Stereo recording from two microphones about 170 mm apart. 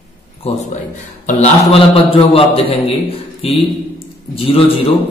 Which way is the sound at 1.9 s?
35° left (ahead or behind).